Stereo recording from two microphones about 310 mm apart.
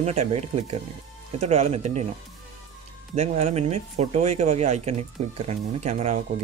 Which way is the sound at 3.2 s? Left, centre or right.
Right.